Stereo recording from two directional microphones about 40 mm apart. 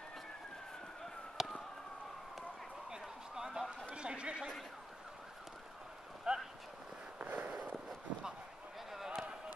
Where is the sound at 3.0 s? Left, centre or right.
Centre.